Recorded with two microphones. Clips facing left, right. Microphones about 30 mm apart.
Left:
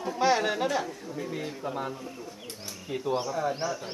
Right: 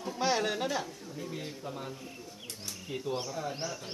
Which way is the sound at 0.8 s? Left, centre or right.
Centre.